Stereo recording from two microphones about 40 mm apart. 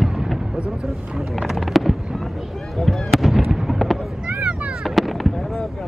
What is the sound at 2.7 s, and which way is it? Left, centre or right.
Fireworks, centre.